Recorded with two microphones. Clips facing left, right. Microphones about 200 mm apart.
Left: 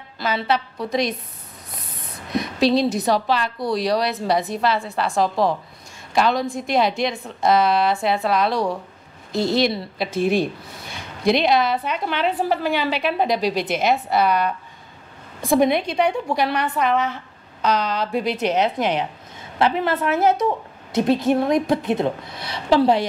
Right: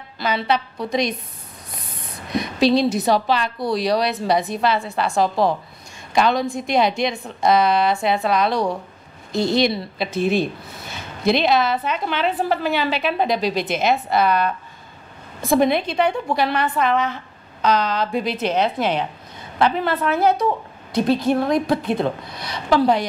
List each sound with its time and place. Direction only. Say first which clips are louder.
0.2 s a woman's voice: right 1 dB; 5° left (ahead or behind)
2.3 s a woman's voice: right 1 dB; centre (ahead or behind); by 23.0 s 25° left (ahead or behind)